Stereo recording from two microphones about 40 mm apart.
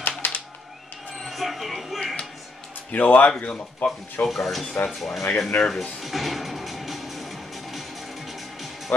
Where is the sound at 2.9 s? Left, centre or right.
Left.